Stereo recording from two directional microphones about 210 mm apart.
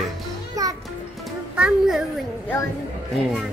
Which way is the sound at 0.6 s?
15° right (ahead or behind).